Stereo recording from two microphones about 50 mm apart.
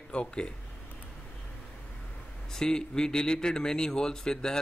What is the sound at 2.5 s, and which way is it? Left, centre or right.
A man's voice, centre.